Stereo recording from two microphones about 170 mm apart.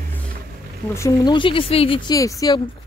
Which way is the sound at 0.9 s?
20° left (ahead or behind).